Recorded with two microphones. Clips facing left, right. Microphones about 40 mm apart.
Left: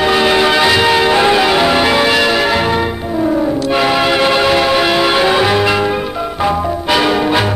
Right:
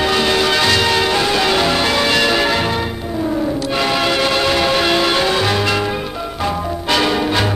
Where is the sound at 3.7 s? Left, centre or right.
Centre.